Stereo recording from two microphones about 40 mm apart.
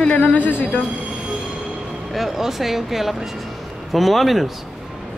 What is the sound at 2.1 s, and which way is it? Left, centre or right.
Speech, centre.